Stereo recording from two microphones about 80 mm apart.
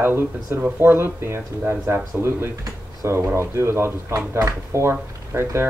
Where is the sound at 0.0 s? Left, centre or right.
Right.